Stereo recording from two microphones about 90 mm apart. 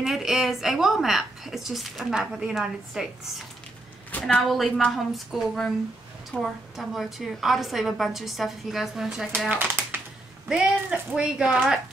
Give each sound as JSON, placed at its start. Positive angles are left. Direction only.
{"t": 0.0, "sound": "a woman's voice", "side_deg": -5}
{"t": 4.1, "sound": "a sound", "side_deg": 20}
{"t": 4.5, "sound": "a woman's voice", "side_deg": 0}
{"t": 9.5, "sound": "typewriter", "side_deg": -20}
{"t": 10.5, "sound": "speech", "side_deg": -10}